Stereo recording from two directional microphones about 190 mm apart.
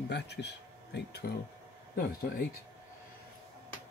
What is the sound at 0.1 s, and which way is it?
Speech, 60° left (ahead or behind).